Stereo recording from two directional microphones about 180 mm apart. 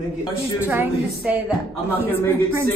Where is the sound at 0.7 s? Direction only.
10° right (ahead or behind).